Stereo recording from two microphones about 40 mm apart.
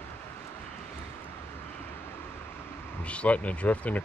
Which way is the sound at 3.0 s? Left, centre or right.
Left.